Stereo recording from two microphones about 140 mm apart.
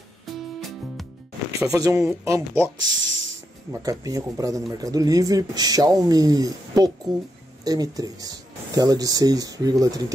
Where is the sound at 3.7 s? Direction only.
25° right (ahead or behind).